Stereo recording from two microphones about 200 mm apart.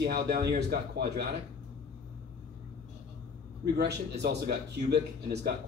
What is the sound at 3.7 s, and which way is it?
Speech, 55° right (ahead or behind).